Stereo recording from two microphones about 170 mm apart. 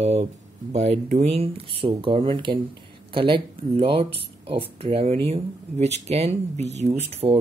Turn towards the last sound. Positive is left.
turn(degrees=-40)  # may be behind; listen again after turning